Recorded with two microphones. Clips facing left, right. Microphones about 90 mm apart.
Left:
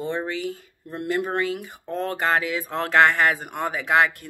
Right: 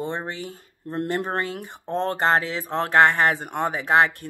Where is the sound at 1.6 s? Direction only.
25° right (ahead or behind).